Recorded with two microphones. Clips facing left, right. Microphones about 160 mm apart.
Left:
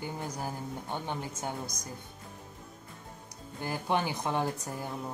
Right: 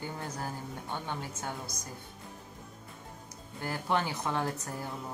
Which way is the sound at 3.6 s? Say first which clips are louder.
Left 1 dB; 15° left (ahead or behind).